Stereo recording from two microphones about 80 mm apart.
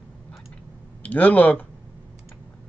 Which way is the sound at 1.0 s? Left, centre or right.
Centre.